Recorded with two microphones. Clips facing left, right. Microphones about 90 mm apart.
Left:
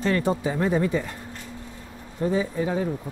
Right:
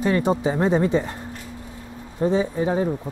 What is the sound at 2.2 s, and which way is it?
Speech, 25° right (ahead or behind).